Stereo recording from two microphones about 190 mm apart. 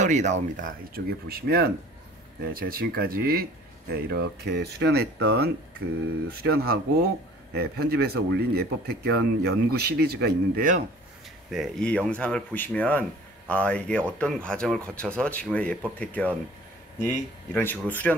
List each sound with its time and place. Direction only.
0.0 s speech: 40° right (ahead or behind)
11.5 s speech: centre (ahead or behind)
17.5 s speech: 10° left (ahead or behind)